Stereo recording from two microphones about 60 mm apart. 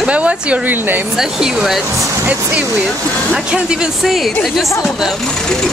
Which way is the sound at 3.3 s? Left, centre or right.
Centre.